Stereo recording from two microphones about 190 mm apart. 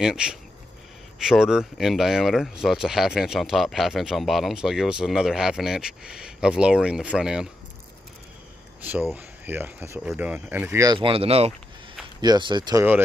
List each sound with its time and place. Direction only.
0.0 s speech: 5° right (ahead or behind)
9.1 s speech: 10° right (ahead or behind)
11.0 s speech: 30° right (ahead or behind)